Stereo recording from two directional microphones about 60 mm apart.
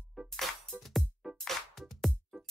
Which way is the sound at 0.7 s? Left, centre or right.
Centre.